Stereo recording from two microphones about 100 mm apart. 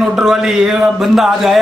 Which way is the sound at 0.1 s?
5° right (ahead or behind).